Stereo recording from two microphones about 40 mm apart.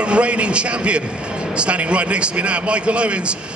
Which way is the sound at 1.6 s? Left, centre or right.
Right.